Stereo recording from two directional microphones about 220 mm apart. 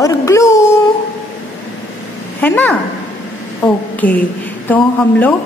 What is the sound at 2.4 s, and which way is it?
A woman's voice, 10° left (ahead or behind).